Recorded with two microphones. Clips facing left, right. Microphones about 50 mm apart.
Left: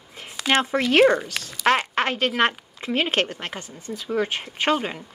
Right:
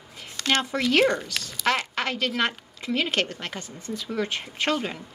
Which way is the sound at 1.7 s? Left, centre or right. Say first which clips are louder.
Left 5 dB; left.